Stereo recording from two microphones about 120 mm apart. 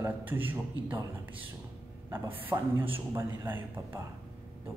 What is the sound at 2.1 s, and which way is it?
A man's voice, 20° right (ahead or behind).